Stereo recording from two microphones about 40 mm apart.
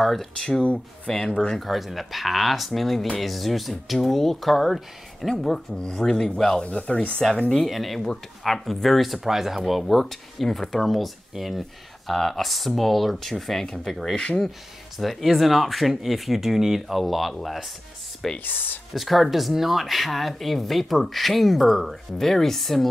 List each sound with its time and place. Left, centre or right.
0.0 s speech: centre
0.4 s speech: centre
1.5 s speech: centre
5.8 s speech: centre
6.6 s speech: left
7.6 s speech: centre
14.1 s speech: left
15.0 s speech: centre
18.4 s speech: left
18.9 s speech: centre